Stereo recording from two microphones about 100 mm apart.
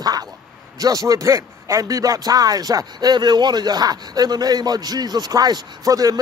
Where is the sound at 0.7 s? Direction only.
35° right (ahead or behind).